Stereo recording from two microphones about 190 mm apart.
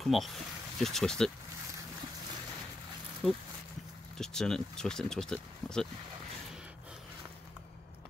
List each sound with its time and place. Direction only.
0.0 s speech: centre (ahead or behind)
3.2 s speech: centre (ahead or behind)